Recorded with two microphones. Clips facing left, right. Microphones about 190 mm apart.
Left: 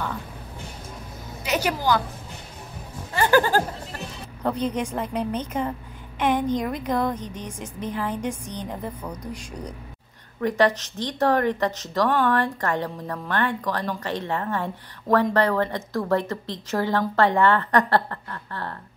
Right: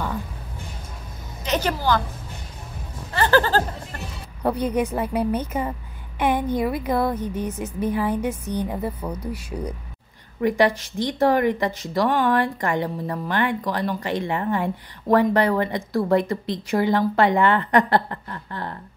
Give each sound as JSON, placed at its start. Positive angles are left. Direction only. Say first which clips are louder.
{"t": 1.4, "sound": "a woman's voice", "louder": "right 1 dB", "side_deg": 10}
{"t": 3.2, "sound": "speech", "louder": "even", "side_deg": 15}
{"t": 4.4, "sound": "speech", "louder": "right 3 dB", "side_deg": -10}